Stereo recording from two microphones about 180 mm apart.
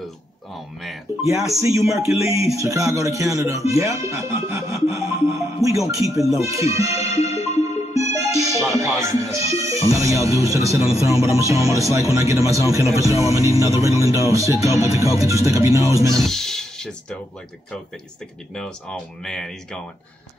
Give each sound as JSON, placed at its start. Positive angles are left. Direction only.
{"t": 1.2, "sound": "speech", "side_deg": -15}
{"t": 7.2, "sound": "music", "side_deg": 35}
{"t": 7.9, "sound": "speech", "side_deg": -15}
{"t": 16.1, "sound": "speech", "side_deg": 0}
{"t": 18.5, "sound": "speech", "side_deg": 5}